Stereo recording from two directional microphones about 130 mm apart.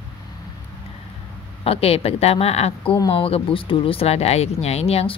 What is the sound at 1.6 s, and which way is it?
Speech, 50° left (ahead or behind).